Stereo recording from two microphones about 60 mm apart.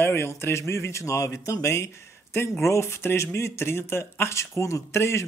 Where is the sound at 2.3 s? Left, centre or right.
Left.